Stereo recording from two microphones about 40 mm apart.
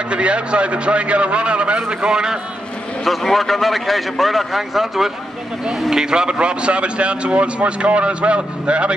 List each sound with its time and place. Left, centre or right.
0.1 s a man's voice: right
3.1 s a man's voice: centre; by 8.9 s right